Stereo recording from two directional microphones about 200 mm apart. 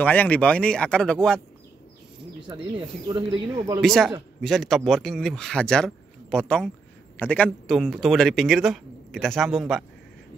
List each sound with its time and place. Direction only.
0.0 s speech: 10° left (ahead or behind)
3.1 s speech: 20° right (ahead or behind)
3.8 s speech: centre (ahead or behind)